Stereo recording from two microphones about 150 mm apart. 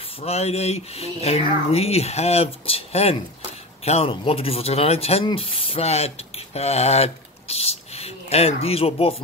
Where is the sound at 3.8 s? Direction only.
40° left (ahead or behind).